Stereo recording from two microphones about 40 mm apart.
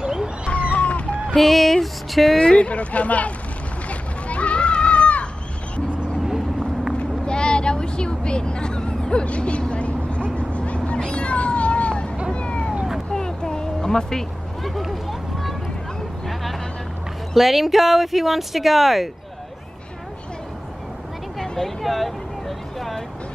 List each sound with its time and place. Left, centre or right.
0.0 s a sound: centre
0.5 s cat: left
1.3 s speech: centre
2.3 s speech: left
3.9 s goat: left
6.2 s vehicle: centre
7.0 s vehicle: left
11.1 s cat: left
13.1 s a sound: centre
14.8 s run: centre
16.3 s vehicle: centre
17.3 s speech: centre
21.4 s speech: centre
22.8 s vehicle: centre